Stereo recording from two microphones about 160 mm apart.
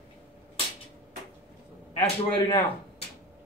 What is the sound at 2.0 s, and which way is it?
Speech, 35° left (ahead or behind).